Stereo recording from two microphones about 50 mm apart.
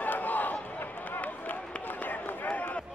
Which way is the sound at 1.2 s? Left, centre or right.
Left.